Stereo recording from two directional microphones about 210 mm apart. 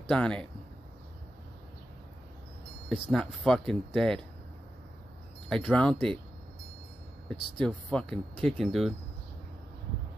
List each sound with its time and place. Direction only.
0.1 s speech: 5° left (ahead or behind)
3.1 s speech: centre (ahead or behind)
5.7 s speech: 5° left (ahead or behind)
7.2 s speech: 5° left (ahead or behind)